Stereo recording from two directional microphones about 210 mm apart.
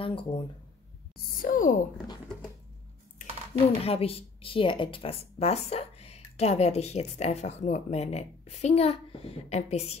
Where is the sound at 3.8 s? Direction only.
25° left (ahead or behind).